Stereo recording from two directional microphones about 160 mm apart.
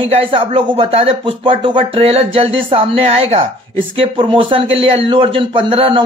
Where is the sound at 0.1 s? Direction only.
40° right (ahead or behind).